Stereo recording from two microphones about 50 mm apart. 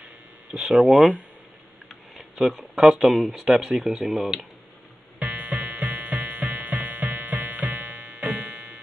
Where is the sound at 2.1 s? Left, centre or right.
Centre.